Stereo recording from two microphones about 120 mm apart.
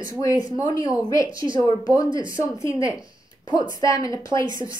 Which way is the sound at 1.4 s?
40° right (ahead or behind).